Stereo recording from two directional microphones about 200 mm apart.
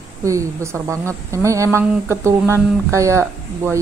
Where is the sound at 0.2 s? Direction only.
15° right (ahead or behind).